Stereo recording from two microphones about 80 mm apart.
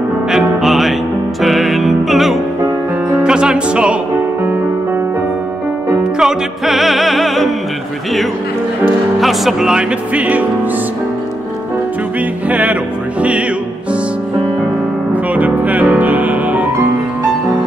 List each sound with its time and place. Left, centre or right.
0.3 s music: centre
6.1 s music: centre
9.2 s speech: centre
12.4 s music: centre
15.3 s music: centre